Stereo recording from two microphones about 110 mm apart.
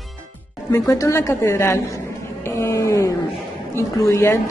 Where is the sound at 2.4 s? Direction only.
25° left (ahead or behind).